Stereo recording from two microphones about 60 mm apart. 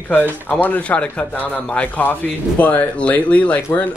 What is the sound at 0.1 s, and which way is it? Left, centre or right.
Speech, left.